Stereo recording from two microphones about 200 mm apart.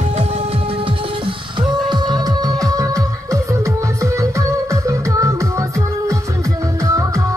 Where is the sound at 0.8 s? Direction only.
25° right (ahead or behind).